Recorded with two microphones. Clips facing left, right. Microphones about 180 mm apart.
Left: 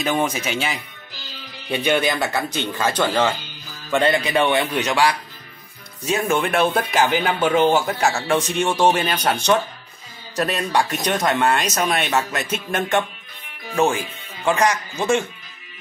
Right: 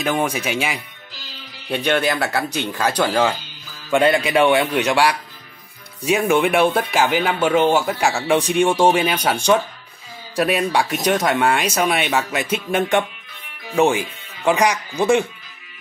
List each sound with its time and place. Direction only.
0.1 s a man's voice: 10° right (ahead or behind)
1.7 s a man's voice: 5° left (ahead or behind); by 15.2 s 15° right (ahead or behind)